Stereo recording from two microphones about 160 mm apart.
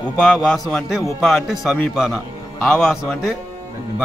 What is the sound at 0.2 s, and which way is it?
A man's voice, centre (ahead or behind).